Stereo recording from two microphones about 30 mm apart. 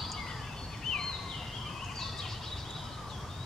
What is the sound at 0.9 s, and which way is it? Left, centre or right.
Turkey, left.